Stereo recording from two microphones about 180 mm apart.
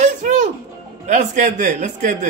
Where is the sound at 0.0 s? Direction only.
45° right (ahead or behind).